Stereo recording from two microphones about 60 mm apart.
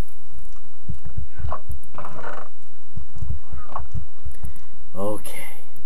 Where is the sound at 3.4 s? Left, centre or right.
Centre.